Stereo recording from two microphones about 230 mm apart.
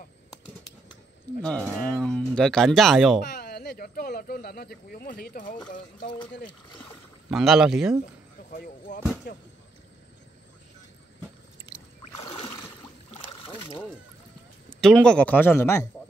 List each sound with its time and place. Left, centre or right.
1.4 s speech: centre
3.3 s speech: left
7.2 s speech: centre
8.5 s speech: left
12.2 s a sound: left
13.3 s boat: left
14.8 s speech: centre